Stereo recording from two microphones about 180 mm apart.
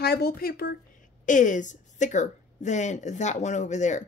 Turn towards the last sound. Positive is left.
turn(degrees=40)  # may be behind; listen again after turning